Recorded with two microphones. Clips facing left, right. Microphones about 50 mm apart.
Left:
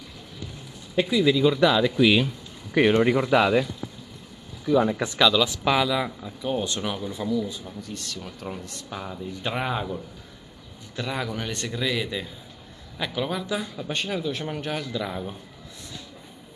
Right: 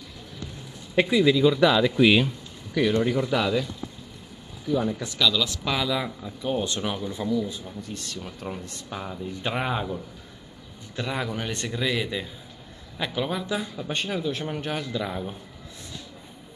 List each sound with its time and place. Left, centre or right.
1.2 s speech: centre
3.0 s speech: left
4.6 s speech: left
5.0 s speech: left
5.3 s speech: centre
11.0 s speech: centre